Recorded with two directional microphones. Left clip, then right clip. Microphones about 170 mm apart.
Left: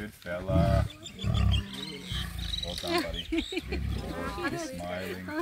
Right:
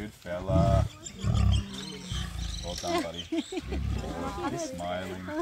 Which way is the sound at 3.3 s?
75° right (ahead or behind).